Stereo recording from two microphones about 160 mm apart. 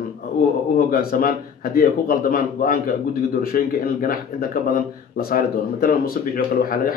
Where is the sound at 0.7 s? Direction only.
65° left (ahead or behind).